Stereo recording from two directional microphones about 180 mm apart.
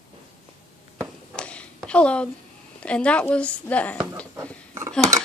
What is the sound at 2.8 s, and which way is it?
A woman's voice, 5° left (ahead or behind).